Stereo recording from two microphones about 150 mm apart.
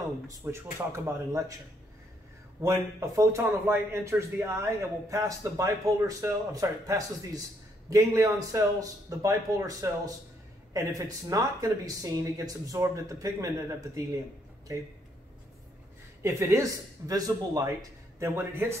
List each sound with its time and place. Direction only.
0.3 s a man's voice: 20° right (ahead or behind)
2.6 s a man's voice: 20° right (ahead or behind)
16.2 s a man's voice: 20° right (ahead or behind)